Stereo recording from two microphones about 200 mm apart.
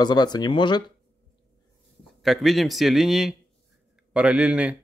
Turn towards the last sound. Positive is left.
turn(degrees=-5)  # may be behind; listen again after turning